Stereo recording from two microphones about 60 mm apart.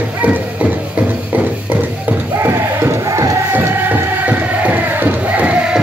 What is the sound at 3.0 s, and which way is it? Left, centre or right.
Music, right.